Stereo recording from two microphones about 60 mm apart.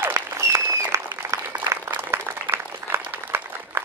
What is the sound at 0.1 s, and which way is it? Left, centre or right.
Applause, right.